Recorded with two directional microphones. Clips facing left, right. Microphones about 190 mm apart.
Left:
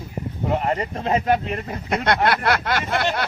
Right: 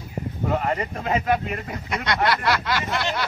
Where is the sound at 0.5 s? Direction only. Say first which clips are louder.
Left 2 dB; 30° left (ahead or behind).